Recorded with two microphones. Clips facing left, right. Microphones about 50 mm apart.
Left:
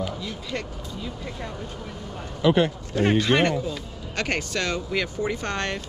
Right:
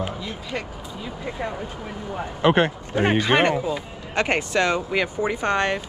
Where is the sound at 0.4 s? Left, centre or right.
Centre.